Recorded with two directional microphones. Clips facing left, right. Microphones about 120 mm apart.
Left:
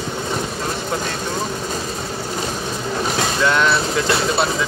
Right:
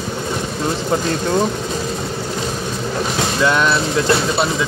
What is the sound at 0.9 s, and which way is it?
Speech, 30° right (ahead or behind).